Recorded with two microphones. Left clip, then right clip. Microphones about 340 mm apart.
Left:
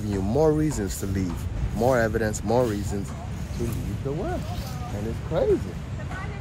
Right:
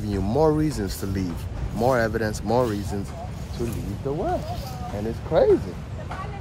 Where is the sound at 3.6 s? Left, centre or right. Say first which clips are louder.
Right 2 dB; centre.